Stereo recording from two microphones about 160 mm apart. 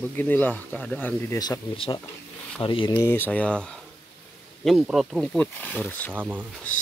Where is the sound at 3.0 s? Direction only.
15° left (ahead or behind).